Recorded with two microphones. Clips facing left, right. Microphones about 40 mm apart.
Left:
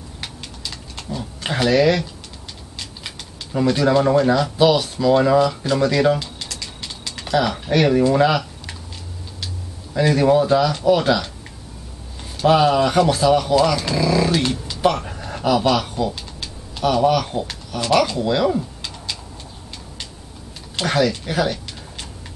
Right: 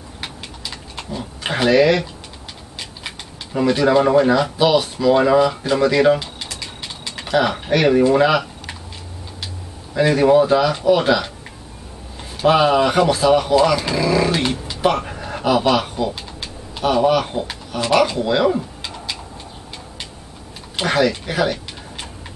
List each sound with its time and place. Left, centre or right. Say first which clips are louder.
0.2 s a sound: right 2 dB; centre
3.5 s speech: right 2 dB; centre
9.9 s speech: right 2 dB; centre
12.4 s speech: right 1 dB; centre
20.7 s speech: right 2 dB; centre